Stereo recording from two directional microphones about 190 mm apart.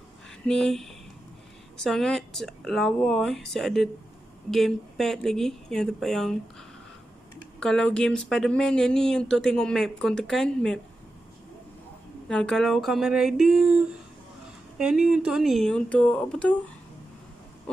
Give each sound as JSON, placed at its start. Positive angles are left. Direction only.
{"t": 0.5, "sound": "speech", "side_deg": 5}
{"t": 7.6, "sound": "speech", "side_deg": 5}
{"t": 12.3, "sound": "speech", "side_deg": 5}